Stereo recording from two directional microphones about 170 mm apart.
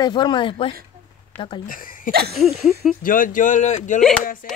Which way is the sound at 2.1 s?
65° right (ahead or behind).